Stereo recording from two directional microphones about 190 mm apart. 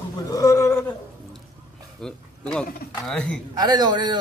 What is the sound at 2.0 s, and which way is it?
Speech, 5° left (ahead or behind).